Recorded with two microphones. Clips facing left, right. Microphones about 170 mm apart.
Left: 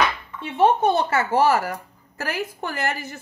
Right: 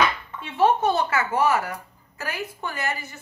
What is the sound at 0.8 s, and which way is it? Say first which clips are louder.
Speech: left 2 dB; 30° left (ahead or behind).